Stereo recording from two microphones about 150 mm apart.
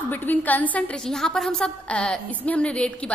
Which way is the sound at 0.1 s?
10° left (ahead or behind).